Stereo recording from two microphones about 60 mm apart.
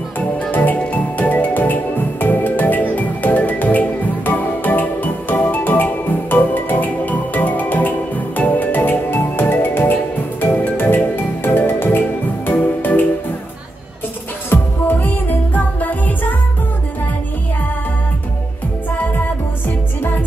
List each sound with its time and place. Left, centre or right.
0.5 s music: left
14.5 s music: left